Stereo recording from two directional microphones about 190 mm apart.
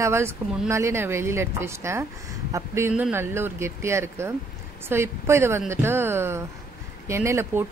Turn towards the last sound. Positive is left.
turn(degrees=-15)  # may be behind; listen again after turning